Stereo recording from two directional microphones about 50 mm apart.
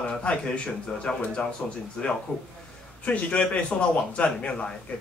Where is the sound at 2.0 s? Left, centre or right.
Centre.